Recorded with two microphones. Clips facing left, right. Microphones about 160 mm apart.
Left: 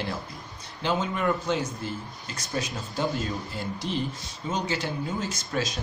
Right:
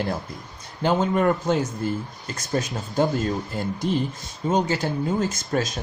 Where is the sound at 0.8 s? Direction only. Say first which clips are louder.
Right 6 dB; 45° right (ahead or behind).